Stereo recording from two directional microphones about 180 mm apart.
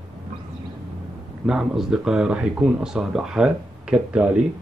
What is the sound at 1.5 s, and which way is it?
Speech, 5° right (ahead or behind).